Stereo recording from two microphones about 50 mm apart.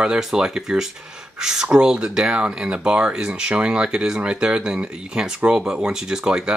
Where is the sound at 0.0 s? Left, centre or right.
Centre.